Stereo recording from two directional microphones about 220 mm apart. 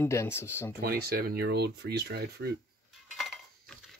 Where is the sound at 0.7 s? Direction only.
45° right (ahead or behind).